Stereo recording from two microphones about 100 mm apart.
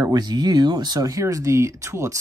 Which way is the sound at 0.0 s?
45° right (ahead or behind).